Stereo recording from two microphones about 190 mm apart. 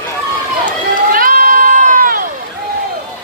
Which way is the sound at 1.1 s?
50° right (ahead or behind).